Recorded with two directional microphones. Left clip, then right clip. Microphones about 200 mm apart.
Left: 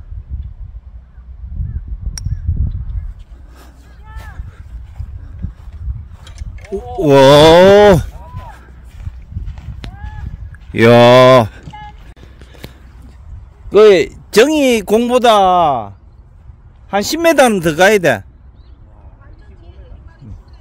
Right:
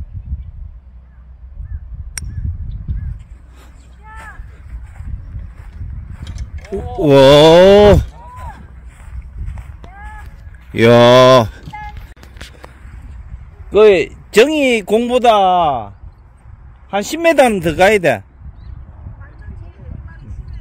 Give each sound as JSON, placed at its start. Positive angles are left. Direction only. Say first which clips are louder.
{"t": 2.9, "sound": "a sound", "louder": "right 5 dB", "side_deg": 50}
{"t": 5.4, "sound": "horse", "louder": "left 10 dB", "side_deg": 20}
{"t": 6.2, "sound": "a sound", "louder": "even", "side_deg": 50}
{"t": 7.0, "sound": "speech", "louder": "left 1 dB", "side_deg": 15}
{"t": 10.7, "sound": "speech", "louder": "left 1 dB", "side_deg": 10}
{"t": 13.7, "sound": "speech", "louder": "left 2 dB", "side_deg": 25}
{"t": 16.9, "sound": "speech", "louder": "left 1 dB", "side_deg": 25}